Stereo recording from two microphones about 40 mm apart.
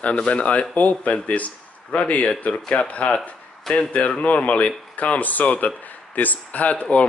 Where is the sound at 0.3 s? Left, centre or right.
Left.